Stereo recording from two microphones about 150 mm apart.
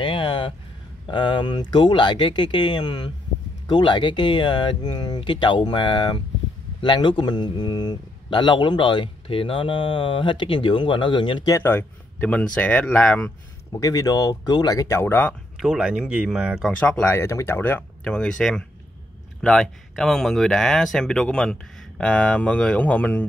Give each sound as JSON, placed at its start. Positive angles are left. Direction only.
{"t": 0.0, "sound": "a sound", "side_deg": 35}
{"t": 1.0, "sound": "speech", "side_deg": 30}
{"t": 13.7, "sound": "speech", "side_deg": 25}
{"t": 15.5, "sound": "speech", "side_deg": -5}
{"t": 16.7, "sound": "speech", "side_deg": 10}